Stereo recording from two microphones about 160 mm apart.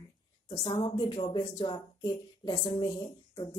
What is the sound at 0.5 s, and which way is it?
Speech, 30° left (ahead or behind).